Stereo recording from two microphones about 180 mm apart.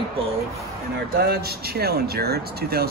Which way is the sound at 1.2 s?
60° right (ahead or behind).